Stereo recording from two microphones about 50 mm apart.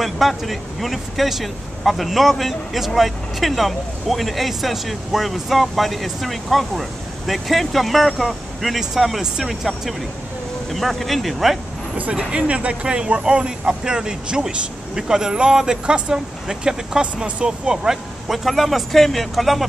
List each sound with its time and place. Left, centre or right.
0.0 s speech: centre
12.0 s speech: right
18.3 s speech: centre